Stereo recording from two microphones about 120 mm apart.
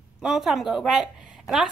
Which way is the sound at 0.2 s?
5° right (ahead or behind).